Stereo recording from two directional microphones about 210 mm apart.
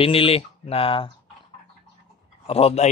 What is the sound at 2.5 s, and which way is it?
Speech, 30° left (ahead or behind).